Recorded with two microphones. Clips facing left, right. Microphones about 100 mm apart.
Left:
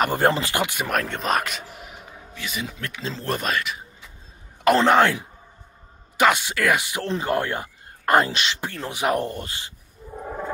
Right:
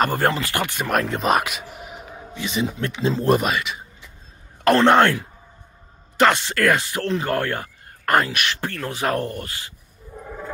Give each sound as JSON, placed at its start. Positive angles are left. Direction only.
{"t": 0.1, "sound": "speech", "side_deg": 20}
{"t": 0.8, "sound": "speech", "side_deg": 0}
{"t": 1.9, "sound": "a man's voice", "side_deg": -20}
{"t": 3.4, "sound": "speech", "side_deg": 0}
{"t": 6.1, "sound": "speech", "side_deg": 10}
{"t": 10.2, "sound": "a sound", "side_deg": 30}